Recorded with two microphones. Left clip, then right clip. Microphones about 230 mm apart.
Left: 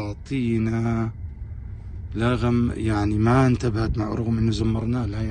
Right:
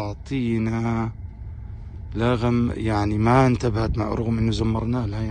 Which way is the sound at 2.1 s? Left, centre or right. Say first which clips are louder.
Right 1 dB; right.